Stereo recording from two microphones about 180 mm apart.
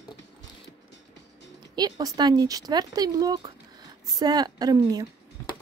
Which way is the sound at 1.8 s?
20° right (ahead or behind).